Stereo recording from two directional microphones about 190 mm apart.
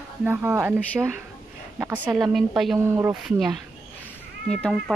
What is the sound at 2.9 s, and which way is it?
Speech, 15° right (ahead or behind).